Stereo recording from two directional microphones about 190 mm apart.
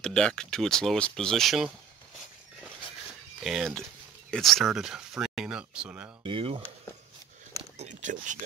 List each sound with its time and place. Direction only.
0.0 s speech: 5° left (ahead or behind)
3.4 s speech: centre (ahead or behind)
6.2 s speech: 30° right (ahead or behind)
7.7 s speech: 35° right (ahead or behind)